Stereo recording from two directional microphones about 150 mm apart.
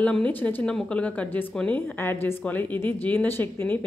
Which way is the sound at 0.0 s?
10° left (ahead or behind).